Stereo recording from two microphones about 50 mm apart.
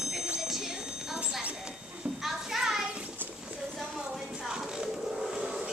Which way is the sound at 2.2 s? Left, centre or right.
Centre.